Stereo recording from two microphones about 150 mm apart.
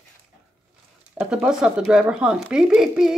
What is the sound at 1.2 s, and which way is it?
Speech, 5° right (ahead or behind).